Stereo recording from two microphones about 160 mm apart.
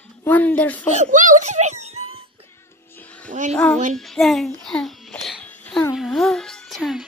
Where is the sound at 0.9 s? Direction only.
50° right (ahead or behind).